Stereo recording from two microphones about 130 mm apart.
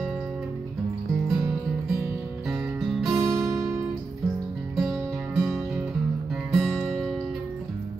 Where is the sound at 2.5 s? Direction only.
Centre (ahead or behind).